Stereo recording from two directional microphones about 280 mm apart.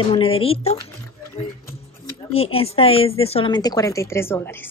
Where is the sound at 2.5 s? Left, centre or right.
Left.